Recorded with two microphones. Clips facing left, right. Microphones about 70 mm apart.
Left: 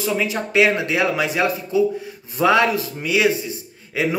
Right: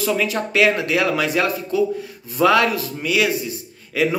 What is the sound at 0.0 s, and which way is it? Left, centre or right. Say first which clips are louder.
Speech: right 1 dB; left.